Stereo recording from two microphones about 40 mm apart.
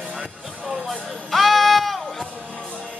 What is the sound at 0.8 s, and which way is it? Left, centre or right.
Music, centre.